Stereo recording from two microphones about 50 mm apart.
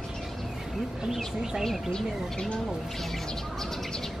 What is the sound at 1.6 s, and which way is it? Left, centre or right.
Speech, centre.